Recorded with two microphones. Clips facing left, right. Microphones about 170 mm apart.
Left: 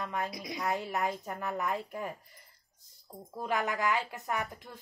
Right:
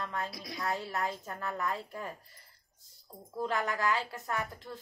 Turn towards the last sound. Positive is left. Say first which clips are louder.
# left 1 dB
turn(degrees=15)  # may be behind; listen again after turning